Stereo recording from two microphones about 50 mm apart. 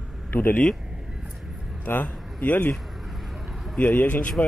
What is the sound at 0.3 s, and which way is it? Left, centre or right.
Speech, left.